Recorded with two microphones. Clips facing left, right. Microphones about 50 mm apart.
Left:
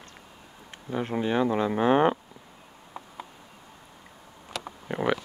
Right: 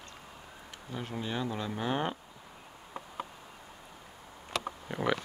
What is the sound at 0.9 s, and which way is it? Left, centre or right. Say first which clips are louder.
Speech: left 10 dB; left.